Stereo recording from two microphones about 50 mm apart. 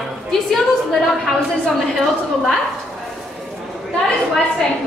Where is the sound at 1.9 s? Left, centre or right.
Centre.